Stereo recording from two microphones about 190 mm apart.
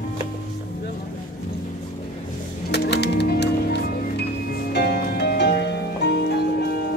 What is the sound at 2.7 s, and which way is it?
Music, 60° left (ahead or behind).